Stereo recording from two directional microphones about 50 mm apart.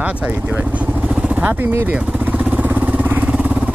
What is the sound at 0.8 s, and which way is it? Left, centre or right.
Vehicle, right.